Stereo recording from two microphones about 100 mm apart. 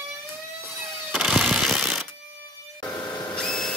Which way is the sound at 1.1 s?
Centre (ahead or behind).